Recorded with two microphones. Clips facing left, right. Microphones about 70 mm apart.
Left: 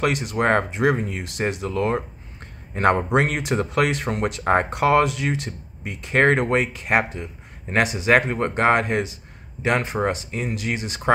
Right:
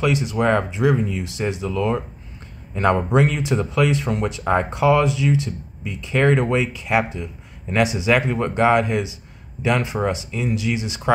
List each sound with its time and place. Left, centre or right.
0.0 s a man's voice: left